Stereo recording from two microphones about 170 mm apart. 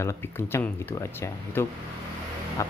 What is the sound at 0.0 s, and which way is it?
Speech, 15° left (ahead or behind).